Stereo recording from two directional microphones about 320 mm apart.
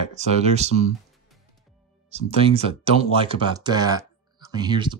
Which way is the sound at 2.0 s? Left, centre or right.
Centre.